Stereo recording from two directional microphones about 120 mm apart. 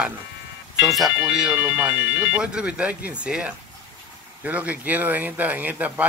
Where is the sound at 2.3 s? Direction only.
10° right (ahead or behind).